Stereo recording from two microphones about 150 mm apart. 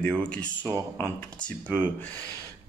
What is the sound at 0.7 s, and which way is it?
Speech, 20° right (ahead or behind).